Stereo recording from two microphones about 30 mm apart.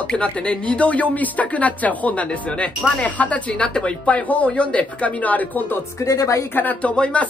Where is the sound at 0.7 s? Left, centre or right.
Left.